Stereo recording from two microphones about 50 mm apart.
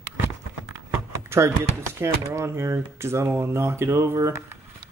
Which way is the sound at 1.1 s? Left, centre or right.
Right.